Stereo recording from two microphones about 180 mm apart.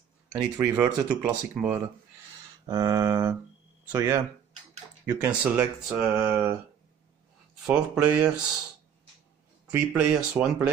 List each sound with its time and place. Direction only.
0.3 s speech: 15° right (ahead or behind)
2.6 s mantra: 20° right (ahead or behind)
3.9 s speech: 15° right (ahead or behind)
7.6 s speech: 5° right (ahead or behind)
9.7 s speech: 10° right (ahead or behind)